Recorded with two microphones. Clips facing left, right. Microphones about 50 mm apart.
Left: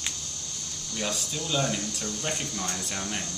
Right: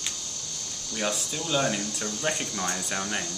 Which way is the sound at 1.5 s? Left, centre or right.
Centre.